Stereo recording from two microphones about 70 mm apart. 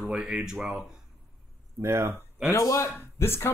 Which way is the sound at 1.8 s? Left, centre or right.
Right.